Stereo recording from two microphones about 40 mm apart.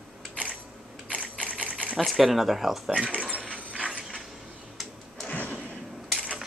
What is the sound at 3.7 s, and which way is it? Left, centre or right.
Mechanisms, right.